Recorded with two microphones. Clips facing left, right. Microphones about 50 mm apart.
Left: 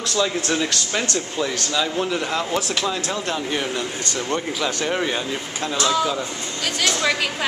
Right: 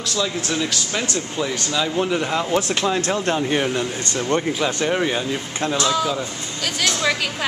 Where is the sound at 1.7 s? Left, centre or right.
Centre.